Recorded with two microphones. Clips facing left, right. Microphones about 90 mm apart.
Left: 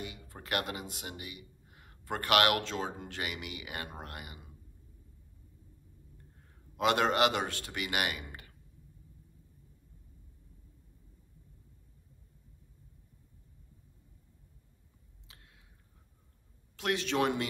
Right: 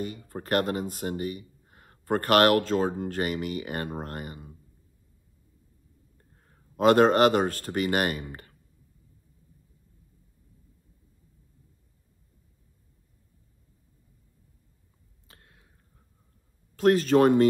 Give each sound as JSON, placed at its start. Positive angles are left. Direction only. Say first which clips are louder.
{"t": 0.0, "sound": "speech", "louder": "right 10 dB", "side_deg": -45}
{"t": 6.8, "sound": "speech", "louder": "right 9 dB", "side_deg": -45}
{"t": 15.2, "sound": "a sound", "louder": "right 4 dB", "side_deg": -45}
{"t": 16.7, "sound": "speech", "louder": "right 12 dB", "side_deg": -45}